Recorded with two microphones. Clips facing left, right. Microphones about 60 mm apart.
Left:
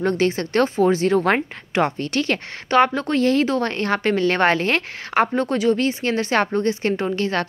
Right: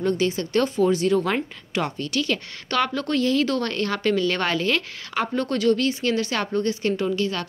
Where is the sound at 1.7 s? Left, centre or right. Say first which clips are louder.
Left 6 dB; left.